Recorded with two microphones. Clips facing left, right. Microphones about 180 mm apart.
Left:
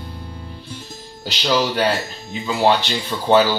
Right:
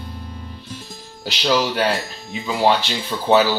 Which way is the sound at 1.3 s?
5° right (ahead or behind).